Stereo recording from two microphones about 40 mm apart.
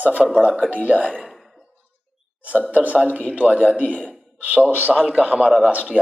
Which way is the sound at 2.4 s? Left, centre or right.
Right.